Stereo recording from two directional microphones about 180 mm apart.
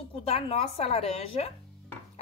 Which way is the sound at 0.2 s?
35° left (ahead or behind).